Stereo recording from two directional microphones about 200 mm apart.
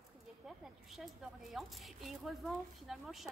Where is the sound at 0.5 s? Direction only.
Centre (ahead or behind).